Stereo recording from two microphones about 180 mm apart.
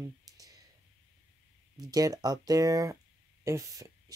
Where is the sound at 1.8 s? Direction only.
20° right (ahead or behind).